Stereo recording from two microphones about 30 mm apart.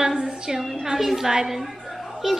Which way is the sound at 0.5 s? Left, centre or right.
Centre.